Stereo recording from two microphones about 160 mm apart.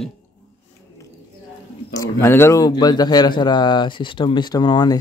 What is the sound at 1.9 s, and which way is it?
Speech, 15° left (ahead or behind).